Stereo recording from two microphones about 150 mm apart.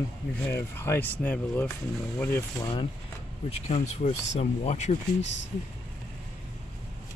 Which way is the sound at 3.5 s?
45° left (ahead or behind).